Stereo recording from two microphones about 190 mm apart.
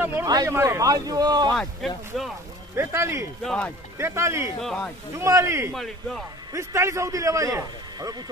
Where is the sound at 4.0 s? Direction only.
15° right (ahead or behind).